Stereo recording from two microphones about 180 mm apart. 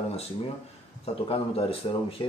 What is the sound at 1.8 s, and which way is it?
Speech, 25° left (ahead or behind).